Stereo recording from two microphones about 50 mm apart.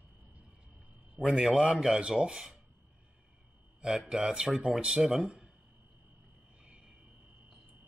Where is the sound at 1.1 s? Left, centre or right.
Centre.